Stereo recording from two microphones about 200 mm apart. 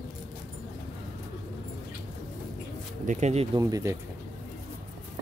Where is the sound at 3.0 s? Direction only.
35° right (ahead or behind).